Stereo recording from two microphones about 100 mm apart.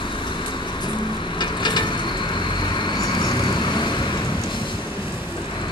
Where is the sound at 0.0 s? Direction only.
55° left (ahead or behind).